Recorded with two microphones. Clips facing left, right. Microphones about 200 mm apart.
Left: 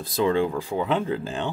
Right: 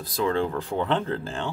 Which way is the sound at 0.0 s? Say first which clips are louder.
Left 3 dB; 20° left (ahead or behind).